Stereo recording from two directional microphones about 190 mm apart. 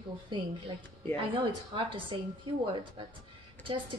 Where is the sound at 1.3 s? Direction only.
25° right (ahead or behind).